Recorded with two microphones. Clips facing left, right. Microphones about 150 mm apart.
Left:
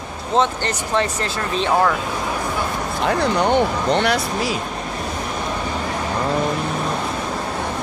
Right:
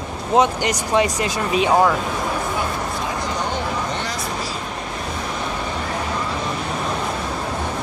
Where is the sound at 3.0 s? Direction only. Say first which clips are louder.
Left 11 dB; 65° left (ahead or behind).